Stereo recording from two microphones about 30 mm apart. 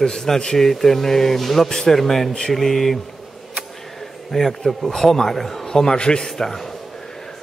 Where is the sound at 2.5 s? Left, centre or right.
Centre.